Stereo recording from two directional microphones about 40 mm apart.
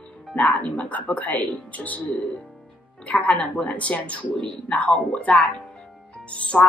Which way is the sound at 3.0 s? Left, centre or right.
Left.